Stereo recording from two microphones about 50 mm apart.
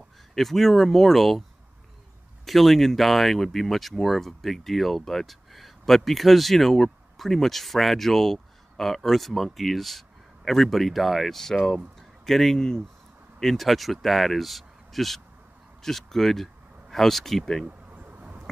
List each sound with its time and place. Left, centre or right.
0.3 s speech: centre
2.4 s speech: centre
17.6 s a sound: right